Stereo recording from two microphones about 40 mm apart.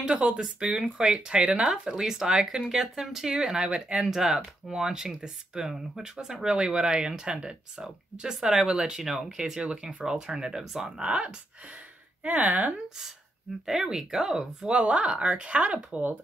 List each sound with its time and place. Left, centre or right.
0.0 s speech: right
9.4 s speech: right
11.1 s speech: right
12.2 s speech: right
13.7 s speech: centre
14.7 s speech: right